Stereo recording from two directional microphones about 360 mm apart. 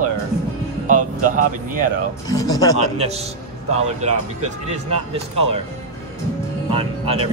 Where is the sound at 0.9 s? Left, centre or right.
Right.